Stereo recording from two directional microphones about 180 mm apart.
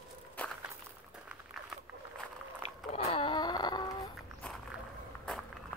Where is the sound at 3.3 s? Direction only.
25° left (ahead or behind).